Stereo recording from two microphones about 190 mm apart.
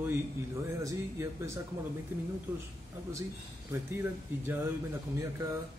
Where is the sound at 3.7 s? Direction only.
10° right (ahead or behind).